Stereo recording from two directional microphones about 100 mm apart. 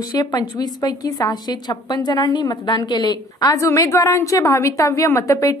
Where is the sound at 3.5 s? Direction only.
30° left (ahead or behind).